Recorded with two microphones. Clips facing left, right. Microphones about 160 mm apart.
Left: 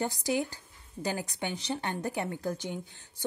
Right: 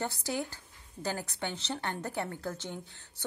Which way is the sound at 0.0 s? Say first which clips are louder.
Left 4 dB; 15° left (ahead or behind).